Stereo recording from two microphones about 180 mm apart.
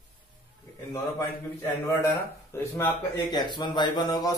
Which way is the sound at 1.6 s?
15° left (ahead or behind).